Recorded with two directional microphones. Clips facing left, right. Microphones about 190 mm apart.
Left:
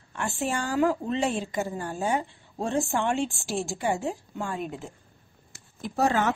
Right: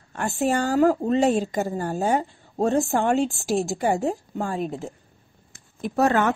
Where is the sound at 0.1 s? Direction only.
40° right (ahead or behind).